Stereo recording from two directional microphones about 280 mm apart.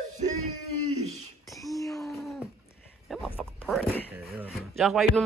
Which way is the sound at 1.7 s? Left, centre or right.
Centre.